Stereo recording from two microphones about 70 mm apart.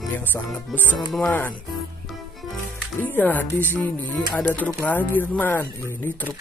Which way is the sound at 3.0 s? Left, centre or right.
Left.